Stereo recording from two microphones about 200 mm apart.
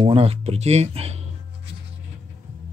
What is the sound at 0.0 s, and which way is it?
Speech, 25° right (ahead or behind).